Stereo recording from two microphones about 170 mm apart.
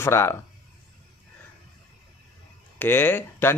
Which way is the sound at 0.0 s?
15° left (ahead or behind).